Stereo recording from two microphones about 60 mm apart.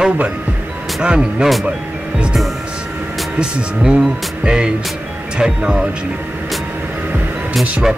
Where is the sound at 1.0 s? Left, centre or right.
Centre.